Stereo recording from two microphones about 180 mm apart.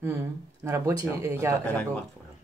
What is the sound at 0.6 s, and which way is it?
Speech, 20° right (ahead or behind).